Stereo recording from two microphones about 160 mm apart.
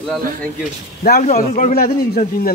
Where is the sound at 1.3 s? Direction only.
60° left (ahead or behind).